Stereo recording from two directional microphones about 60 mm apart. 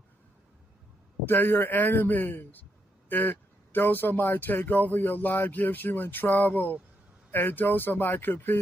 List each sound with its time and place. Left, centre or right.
1.2 s speech: left